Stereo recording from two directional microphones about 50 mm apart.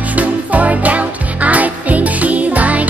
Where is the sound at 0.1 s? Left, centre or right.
Right.